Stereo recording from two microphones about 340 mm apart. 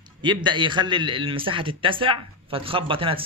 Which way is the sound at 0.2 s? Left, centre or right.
Centre.